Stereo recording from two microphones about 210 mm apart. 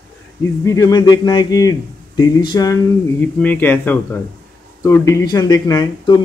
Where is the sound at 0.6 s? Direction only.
15° left (ahead or behind).